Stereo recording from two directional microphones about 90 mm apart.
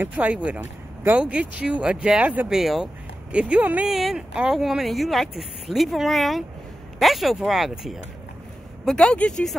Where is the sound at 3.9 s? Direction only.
5° right (ahead or behind).